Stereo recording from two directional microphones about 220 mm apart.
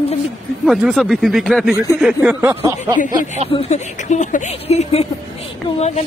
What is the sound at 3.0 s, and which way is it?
Speech, 35° left (ahead or behind).